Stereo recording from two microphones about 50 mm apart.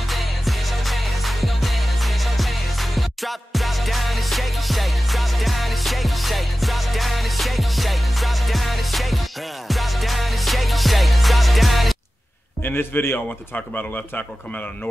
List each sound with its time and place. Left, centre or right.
0.1 s music: centre
12.6 s a man's voice: left
13.6 s speech: left